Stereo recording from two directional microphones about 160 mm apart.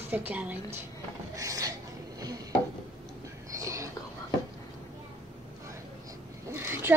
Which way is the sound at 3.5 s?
20° right (ahead or behind).